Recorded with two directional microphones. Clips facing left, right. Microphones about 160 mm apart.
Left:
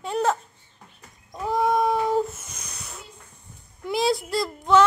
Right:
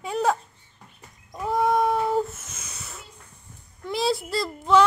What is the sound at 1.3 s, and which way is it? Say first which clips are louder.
Cat: even; centre (ahead or behind).